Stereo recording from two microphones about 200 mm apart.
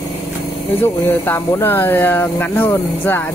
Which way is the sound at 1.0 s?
10° left (ahead or behind).